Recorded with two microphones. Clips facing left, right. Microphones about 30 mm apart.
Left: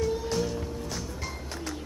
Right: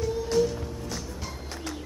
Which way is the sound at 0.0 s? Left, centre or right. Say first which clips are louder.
Right 3 dB; centre.